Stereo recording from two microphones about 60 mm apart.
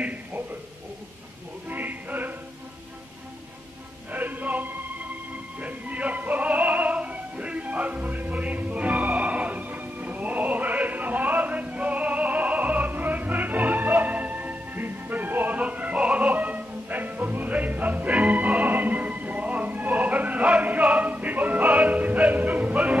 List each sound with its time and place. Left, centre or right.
0.0 s a sound: right
1.7 s music: right
4.1 s music: right
5.6 s opera: right